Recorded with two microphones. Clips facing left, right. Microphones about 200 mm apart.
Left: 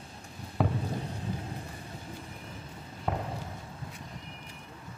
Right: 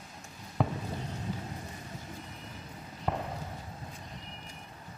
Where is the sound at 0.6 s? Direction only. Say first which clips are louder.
Left 2 dB; centre (ahead or behind).